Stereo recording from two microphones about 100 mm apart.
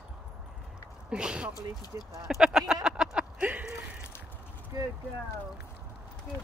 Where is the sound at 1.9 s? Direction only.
30° right (ahead or behind).